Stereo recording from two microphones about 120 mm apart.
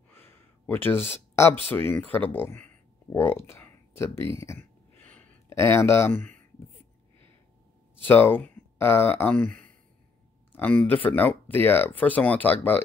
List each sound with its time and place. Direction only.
0.1 s gasp: 20° left (ahead or behind)
1.7 s speech: 15° left (ahead or behind)
6.1 s speech: 90° right
8.0 s speech: 15° left (ahead or behind)
10.5 s speech: 15° left (ahead or behind)